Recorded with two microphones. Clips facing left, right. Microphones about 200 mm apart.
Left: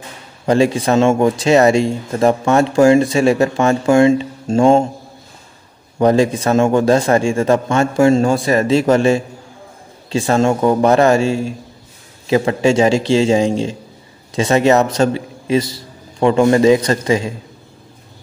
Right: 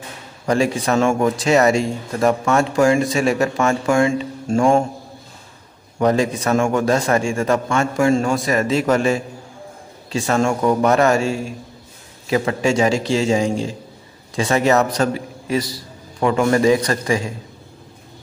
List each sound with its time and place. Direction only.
0.5 s speech: 25° left (ahead or behind)
5.9 s a man's voice: 30° left (ahead or behind)